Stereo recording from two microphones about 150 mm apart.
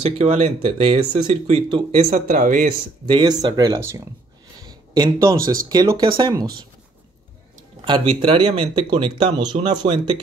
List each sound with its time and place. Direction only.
0.0 s speech: 45° right (ahead or behind)
2.2 s speech: 65° right (ahead or behind)
3.1 s speech: 35° right (ahead or behind)
4.6 s a sound: 25° right (ahead or behind)
5.7 s speech: 25° right (ahead or behind)
7.8 s speech: 35° right (ahead or behind)